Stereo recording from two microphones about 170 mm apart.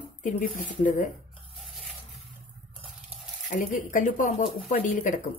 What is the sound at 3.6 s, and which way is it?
Speech, 50° left (ahead or behind).